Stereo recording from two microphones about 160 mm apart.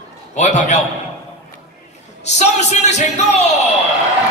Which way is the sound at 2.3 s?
45° left (ahead or behind).